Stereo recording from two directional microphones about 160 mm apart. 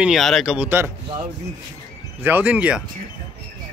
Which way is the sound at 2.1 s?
10° right (ahead or behind).